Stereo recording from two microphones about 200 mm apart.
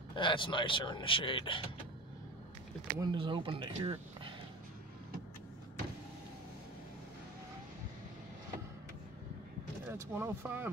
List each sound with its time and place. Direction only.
0.1 s speech: 25° left (ahead or behind)
3.0 s speech: 25° right (ahead or behind)
9.8 s speech: 10° right (ahead or behind)